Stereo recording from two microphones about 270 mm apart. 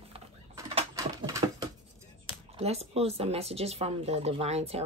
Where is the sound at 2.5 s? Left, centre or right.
Right.